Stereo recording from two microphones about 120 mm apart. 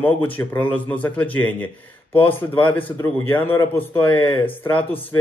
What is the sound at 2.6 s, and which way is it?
A man's voice, 15° left (ahead or behind).